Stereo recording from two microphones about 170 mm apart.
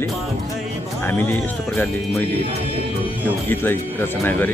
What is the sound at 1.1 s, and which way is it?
Speech, 10° left (ahead or behind).